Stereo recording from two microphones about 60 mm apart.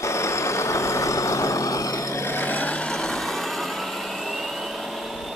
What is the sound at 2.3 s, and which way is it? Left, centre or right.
Vehicle, left.